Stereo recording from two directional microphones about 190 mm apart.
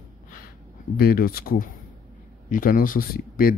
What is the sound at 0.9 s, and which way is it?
Speech, 55° left (ahead or behind).